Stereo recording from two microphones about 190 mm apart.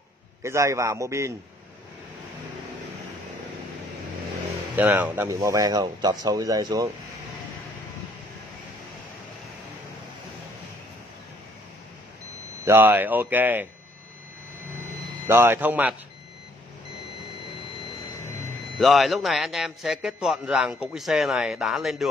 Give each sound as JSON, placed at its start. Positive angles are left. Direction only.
{"t": 0.4, "sound": "speech", "side_deg": -15}
{"t": 4.7, "sound": "speech", "side_deg": -10}
{"t": 12.6, "sound": "speech", "side_deg": -10}
{"t": 14.8, "sound": "a sound", "side_deg": -10}
{"t": 18.8, "sound": "a man's voice", "side_deg": 0}